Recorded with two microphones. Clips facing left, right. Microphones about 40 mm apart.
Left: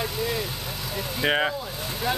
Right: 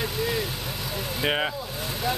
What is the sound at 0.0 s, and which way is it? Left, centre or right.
Vehicle, centre.